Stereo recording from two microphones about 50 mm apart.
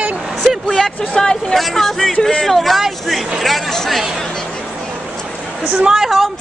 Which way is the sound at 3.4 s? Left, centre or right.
Centre.